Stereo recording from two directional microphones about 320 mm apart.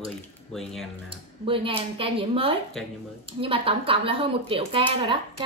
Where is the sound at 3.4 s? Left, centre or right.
Centre.